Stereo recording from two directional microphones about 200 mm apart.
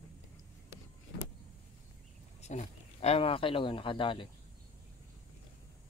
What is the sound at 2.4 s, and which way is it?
Speech, 35° left (ahead or behind).